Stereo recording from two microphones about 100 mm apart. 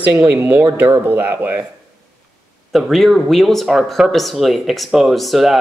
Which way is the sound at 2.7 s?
Centre (ahead or behind).